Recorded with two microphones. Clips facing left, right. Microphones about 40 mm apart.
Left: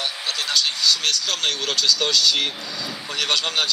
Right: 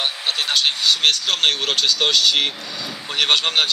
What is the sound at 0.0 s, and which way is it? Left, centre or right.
Speech, right.